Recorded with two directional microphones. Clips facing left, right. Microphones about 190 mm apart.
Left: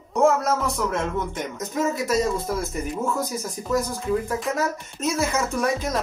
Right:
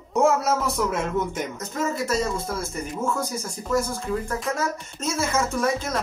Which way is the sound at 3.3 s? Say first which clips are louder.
Even; 15° left (ahead or behind).